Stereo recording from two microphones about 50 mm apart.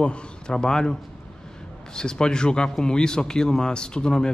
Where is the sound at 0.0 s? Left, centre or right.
Centre.